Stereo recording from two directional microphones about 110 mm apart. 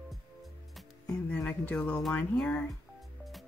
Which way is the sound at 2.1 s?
15° left (ahead or behind).